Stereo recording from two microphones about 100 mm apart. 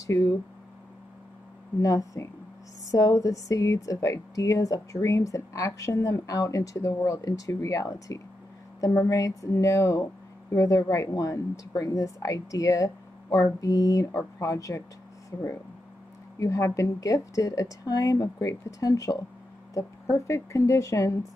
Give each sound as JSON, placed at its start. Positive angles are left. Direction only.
{"t": 0.0, "sound": "speech", "side_deg": 35}
{"t": 1.8, "sound": "a woman's voice", "side_deg": 35}
{"t": 16.3, "sound": "a woman's voice", "side_deg": 30}